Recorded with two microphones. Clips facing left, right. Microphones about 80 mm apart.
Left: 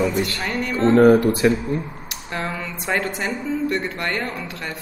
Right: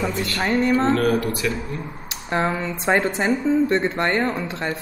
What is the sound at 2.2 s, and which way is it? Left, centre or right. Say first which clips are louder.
A woman's voice: right 5 dB; right.